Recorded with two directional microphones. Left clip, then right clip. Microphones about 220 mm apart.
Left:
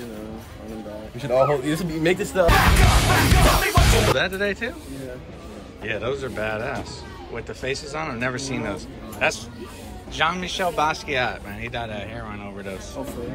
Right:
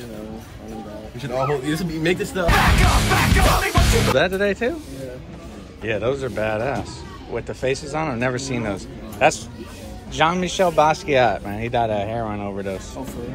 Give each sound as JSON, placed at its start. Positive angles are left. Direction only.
{"t": 1.2, "sound": "speech", "side_deg": 30}
{"t": 1.7, "sound": "speech", "side_deg": 40}
{"t": 3.2, "sound": "a man's voice", "side_deg": 0}
{"t": 5.9, "sound": "a man's voice", "side_deg": 5}